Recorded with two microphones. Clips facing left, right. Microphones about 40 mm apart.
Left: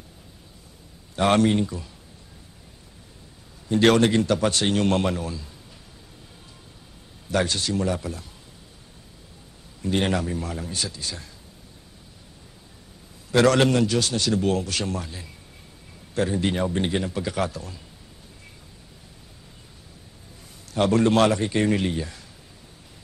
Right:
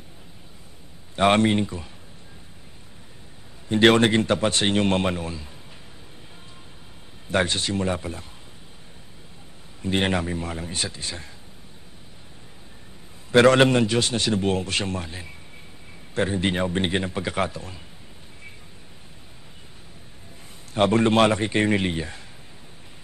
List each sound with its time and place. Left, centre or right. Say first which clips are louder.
1.1 s a man's voice: right 1 dB; right
3.6 s a man's voice: right 1 dB; right
7.2 s a man's voice: right 1 dB; right
9.8 s a man's voice: even; right
13.3 s a man's voice: right 3 dB; right
20.7 s a man's voice: right 1 dB; right